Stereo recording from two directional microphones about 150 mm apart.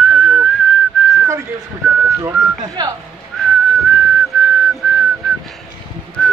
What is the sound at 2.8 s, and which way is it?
Speech, 25° right (ahead or behind).